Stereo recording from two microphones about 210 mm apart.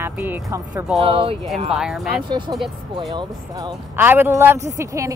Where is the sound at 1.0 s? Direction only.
25° right (ahead or behind).